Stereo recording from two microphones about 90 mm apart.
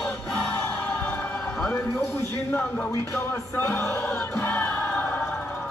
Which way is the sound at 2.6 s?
15° left (ahead or behind).